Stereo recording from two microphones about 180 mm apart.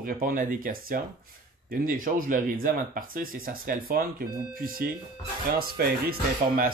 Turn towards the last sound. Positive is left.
turn(degrees=-55)  # may be behind; listen again after turning